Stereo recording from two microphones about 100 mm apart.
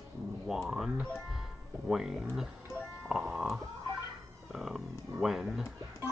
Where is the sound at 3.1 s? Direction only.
5° right (ahead or behind).